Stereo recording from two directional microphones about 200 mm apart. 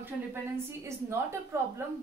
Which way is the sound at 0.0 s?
10° right (ahead or behind).